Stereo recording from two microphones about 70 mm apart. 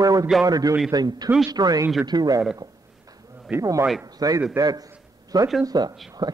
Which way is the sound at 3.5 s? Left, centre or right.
Centre.